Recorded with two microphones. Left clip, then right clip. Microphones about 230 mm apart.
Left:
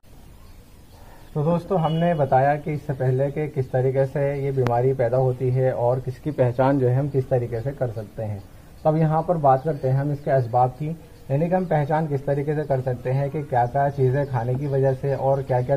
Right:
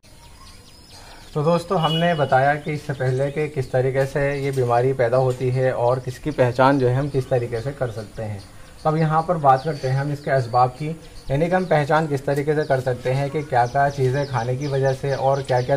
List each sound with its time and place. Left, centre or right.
1.4 s speech: centre
11.2 s speech: centre